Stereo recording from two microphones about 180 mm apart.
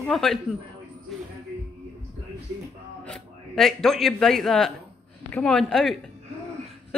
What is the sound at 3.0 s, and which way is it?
Speech, 5° left (ahead or behind).